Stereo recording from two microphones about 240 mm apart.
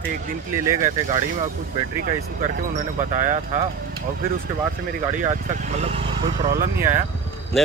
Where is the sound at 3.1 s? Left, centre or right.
Right.